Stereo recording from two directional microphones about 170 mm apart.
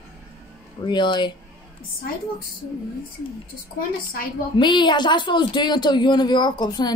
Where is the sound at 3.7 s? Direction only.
60° left (ahead or behind).